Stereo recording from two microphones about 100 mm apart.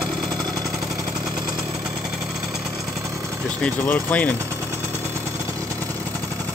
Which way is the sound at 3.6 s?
15° left (ahead or behind).